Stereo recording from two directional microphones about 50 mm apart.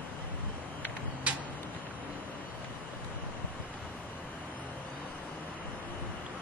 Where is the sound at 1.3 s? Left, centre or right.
Right.